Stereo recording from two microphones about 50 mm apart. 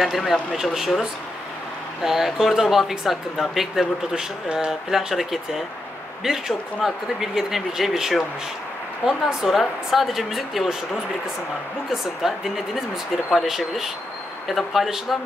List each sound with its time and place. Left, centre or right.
0.0 s speech: centre
2.0 s speech: centre
4.1 s speech: centre
4.6 s speech: centre
11.9 s speech: centre